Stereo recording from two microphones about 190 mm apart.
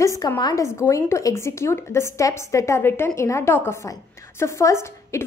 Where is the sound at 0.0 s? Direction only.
15° left (ahead or behind).